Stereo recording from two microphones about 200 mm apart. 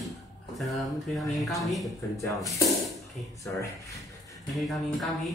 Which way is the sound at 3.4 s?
15° left (ahead or behind).